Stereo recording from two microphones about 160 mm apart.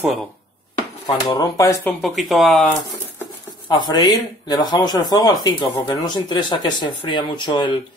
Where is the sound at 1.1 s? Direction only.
25° left (ahead or behind).